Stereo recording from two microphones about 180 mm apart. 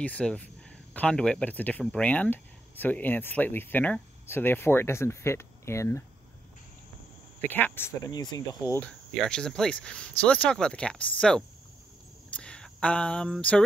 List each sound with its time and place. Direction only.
0.0 s speech: 5° left (ahead or behind)
7.3 s speech: 10° left (ahead or behind)
9.2 s speech: 5° left (ahead or behind)
12.3 s a sound: 5° left (ahead or behind)